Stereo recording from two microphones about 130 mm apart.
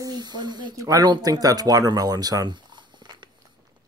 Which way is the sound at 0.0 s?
30° right (ahead or behind).